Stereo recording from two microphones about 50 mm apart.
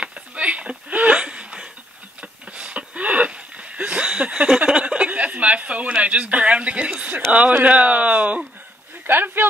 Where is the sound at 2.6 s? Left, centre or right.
Right.